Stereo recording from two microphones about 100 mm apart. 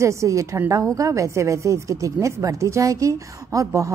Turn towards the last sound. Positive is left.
turn(degrees=-30)  # may be behind; listen again after turning